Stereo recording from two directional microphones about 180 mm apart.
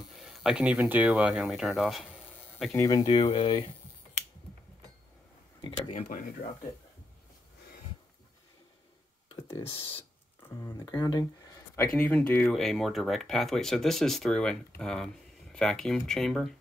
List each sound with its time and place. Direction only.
0.0 s speech: centre (ahead or behind)
2.5 s speech: 10° left (ahead or behind)
3.1 s speech: 35° left (ahead or behind)
5.6 s speech: 30° left (ahead or behind)
10.6 s speech: 20° left (ahead or behind)
11.9 s speech: 10° left (ahead or behind)